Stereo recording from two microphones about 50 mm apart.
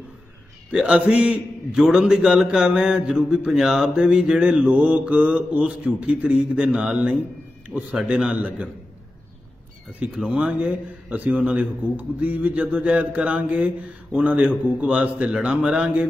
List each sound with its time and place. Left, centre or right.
0.8 s a man's voice: right
10.0 s a man's voice: right
11.1 s a man's voice: right